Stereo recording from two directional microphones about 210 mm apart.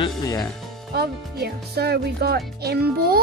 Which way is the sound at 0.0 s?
15° left (ahead or behind).